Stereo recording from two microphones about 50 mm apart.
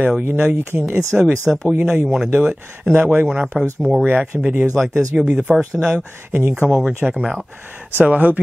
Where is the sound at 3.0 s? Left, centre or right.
Right.